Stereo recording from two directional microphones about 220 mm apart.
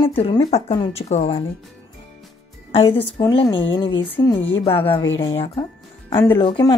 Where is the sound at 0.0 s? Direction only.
25° left (ahead or behind).